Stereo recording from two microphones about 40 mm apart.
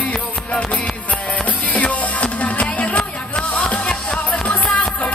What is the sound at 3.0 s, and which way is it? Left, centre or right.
Music, left.